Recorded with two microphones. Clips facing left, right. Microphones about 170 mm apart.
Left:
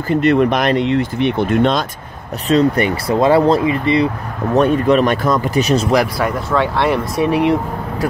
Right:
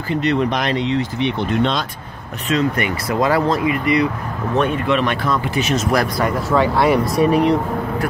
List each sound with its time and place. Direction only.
0.1 s speech: 50° left (ahead or behind)
2.4 s speech: 35° left (ahead or behind)
6.5 s speech: centre (ahead or behind)